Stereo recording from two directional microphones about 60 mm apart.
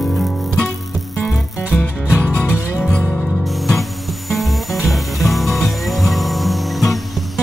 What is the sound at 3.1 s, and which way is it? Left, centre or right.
Music, left.